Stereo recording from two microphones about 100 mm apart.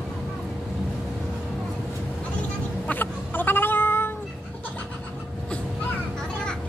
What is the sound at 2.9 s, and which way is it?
Cat, 20° left (ahead or behind).